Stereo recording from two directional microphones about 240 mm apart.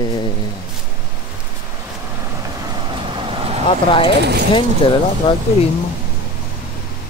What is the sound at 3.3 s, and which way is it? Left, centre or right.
Vehicle, right.